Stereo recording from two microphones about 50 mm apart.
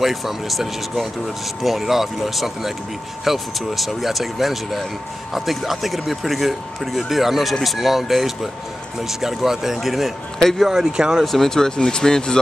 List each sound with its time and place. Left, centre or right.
0.0 s speech: centre
11.2 s speech: centre